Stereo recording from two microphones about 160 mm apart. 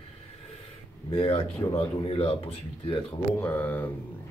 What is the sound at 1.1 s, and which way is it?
Speech, 35° left (ahead or behind).